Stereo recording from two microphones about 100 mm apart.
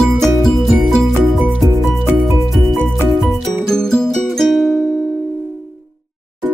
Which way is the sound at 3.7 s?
5° left (ahead or behind).